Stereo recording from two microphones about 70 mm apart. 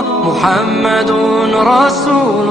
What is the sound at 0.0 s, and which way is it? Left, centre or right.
Music, centre.